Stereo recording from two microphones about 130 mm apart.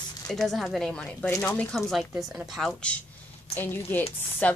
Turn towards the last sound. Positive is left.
turn(degrees=10)  # may be behind; listen again after turning